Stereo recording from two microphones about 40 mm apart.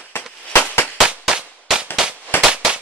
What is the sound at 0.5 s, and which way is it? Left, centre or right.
Firecracker, left.